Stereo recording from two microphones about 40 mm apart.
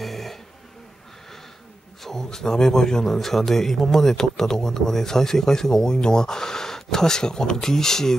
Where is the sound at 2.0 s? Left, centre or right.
Centre.